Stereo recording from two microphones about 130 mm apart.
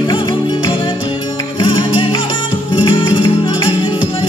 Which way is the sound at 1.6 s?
40° left (ahead or behind).